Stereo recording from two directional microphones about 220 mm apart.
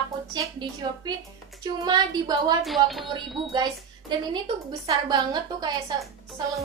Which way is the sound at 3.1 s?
20° right (ahead or behind).